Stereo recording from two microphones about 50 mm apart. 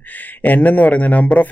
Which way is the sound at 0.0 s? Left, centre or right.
Left.